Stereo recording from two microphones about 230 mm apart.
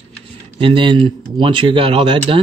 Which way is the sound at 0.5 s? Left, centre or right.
Right.